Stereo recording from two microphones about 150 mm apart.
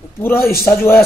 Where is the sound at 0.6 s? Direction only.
15° left (ahead or behind).